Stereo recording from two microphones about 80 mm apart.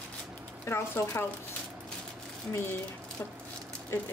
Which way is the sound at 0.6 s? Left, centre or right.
Left.